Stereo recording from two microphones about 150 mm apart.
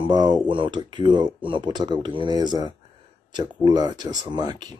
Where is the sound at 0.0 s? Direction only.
30° right (ahead or behind).